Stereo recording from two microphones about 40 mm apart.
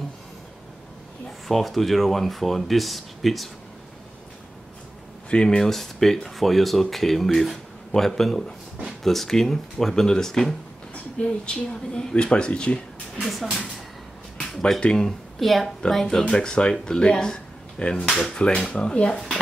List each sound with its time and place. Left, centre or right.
1.5 s speech: centre
5.3 s speech: left
5.6 s speech: centre
11.1 s speech: left
13.2 s speech: centre
14.8 s speech: centre
16.1 s speech: centre